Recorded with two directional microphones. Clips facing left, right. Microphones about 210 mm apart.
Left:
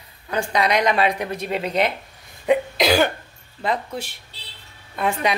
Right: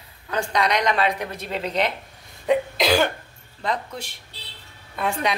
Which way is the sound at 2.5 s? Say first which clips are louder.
Left 2 dB; 5° left (ahead or behind).